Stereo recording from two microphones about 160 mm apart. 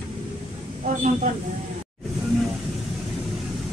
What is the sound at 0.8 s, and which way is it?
Speech, 50° right (ahead or behind).